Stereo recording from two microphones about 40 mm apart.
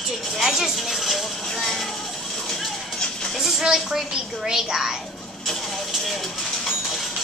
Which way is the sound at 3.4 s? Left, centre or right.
Centre.